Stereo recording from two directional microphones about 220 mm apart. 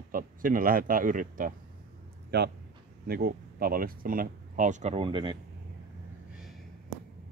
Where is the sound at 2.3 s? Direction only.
50° right (ahead or behind); by 5.4 s 20° right (ahead or behind).